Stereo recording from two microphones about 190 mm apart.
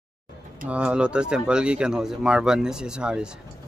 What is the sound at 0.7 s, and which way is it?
Speech, 5° right (ahead or behind).